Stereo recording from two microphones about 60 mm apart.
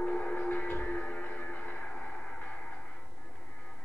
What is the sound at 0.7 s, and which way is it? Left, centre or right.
Music, left.